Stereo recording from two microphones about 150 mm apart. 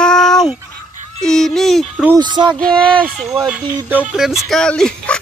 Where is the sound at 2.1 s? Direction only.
30° right (ahead or behind).